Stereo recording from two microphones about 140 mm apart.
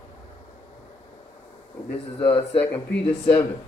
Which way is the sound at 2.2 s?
15° left (ahead or behind).